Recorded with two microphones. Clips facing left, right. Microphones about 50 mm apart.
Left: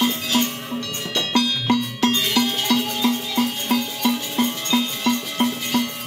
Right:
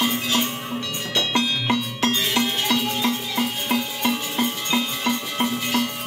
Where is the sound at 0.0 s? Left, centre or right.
Centre.